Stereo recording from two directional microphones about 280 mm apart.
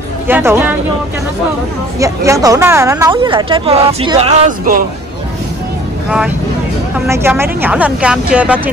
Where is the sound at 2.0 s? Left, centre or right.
Centre; by 4.9 s right.